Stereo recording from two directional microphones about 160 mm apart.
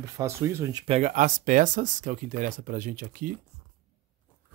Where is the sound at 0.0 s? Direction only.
15° right (ahead or behind).